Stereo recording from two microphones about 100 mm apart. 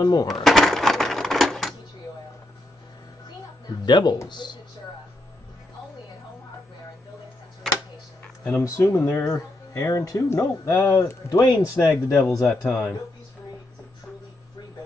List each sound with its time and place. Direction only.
0.0 s speech: 40° left (ahead or behind)
0.3 s coin: centre (ahead or behind)
3.8 s speech: 45° left (ahead or behind)
7.7 s a sound: 5° left (ahead or behind)
8.2 s a sound: 25° left (ahead or behind)
8.9 s speech: 25° left (ahead or behind)
12.4 s speech: centre (ahead or behind)